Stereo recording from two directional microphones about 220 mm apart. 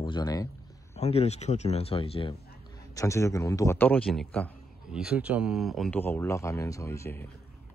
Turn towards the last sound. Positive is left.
turn(degrees=10)  # may be behind; listen again after turning